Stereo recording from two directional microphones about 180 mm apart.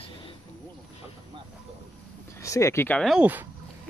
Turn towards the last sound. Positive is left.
turn(degrees=-10)  # may be behind; listen again after turning